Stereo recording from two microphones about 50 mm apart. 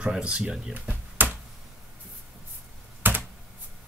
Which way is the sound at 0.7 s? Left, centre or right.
Right.